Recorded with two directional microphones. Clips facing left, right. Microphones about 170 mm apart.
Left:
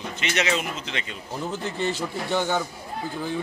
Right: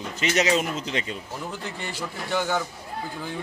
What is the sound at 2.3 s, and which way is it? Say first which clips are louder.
Speech: left 1 dB; 25° left (ahead or behind).